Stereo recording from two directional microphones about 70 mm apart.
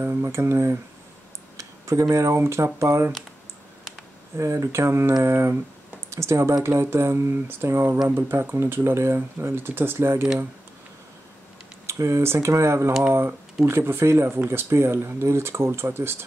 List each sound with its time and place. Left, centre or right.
0.0 s speech: right
4.4 s speech: right
11.8 s speech: right